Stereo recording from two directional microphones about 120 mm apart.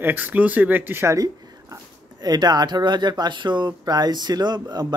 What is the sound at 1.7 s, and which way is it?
Speech, 35° right (ahead or behind).